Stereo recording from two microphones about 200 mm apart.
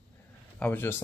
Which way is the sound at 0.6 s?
10° left (ahead or behind).